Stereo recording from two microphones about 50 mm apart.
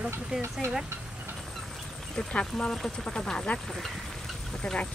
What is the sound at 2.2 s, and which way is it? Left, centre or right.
Speech, centre.